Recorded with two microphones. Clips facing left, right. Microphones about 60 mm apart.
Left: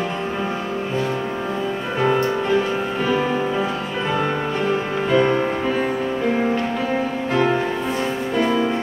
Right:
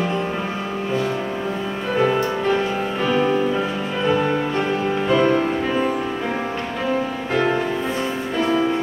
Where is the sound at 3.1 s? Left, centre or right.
Centre.